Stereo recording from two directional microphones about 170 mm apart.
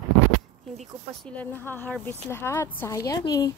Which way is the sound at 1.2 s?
10° left (ahead or behind).